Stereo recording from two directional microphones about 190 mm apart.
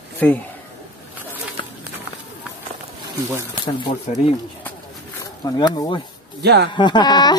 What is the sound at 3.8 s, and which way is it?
Speech, 30° left (ahead or behind).